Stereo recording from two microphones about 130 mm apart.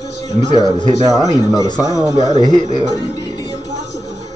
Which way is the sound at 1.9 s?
25° right (ahead or behind).